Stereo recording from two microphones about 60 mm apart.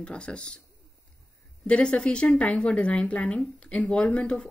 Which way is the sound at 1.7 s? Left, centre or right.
Centre.